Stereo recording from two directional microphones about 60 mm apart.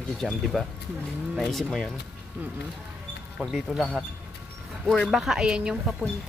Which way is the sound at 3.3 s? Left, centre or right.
Centre.